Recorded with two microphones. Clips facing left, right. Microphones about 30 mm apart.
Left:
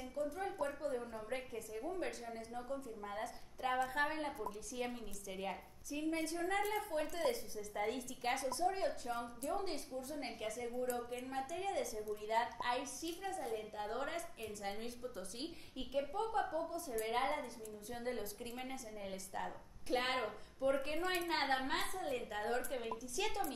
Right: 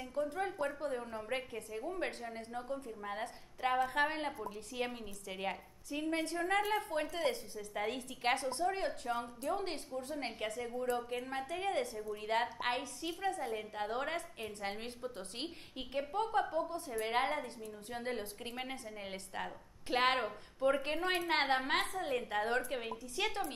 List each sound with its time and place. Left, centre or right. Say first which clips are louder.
0.1 s a woman's voice: right 4 dB; right